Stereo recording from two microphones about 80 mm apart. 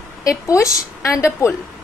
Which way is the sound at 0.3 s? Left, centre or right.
Left.